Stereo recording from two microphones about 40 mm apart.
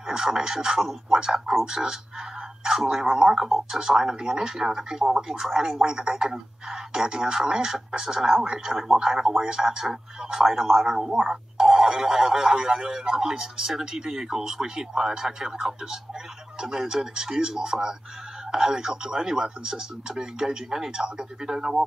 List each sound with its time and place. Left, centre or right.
0.1 s speech: centre
3.3 s speech: centre
8.7 s speech: centre
9.0 s speech: centre